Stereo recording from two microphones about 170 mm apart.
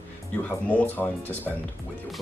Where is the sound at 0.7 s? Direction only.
10° left (ahead or behind).